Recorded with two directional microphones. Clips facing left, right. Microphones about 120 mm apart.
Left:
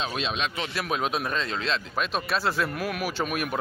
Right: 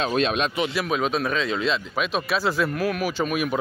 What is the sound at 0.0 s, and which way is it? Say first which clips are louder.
Speech: right 7 dB; 50° right (ahead or behind).